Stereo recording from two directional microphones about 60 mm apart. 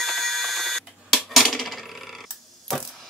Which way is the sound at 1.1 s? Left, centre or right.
Centre.